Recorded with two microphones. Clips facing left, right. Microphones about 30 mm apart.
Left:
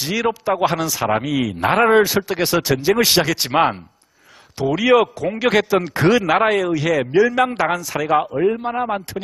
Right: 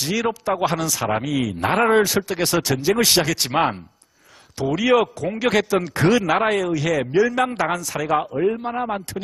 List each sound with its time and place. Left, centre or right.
0.0 s a man's voice: centre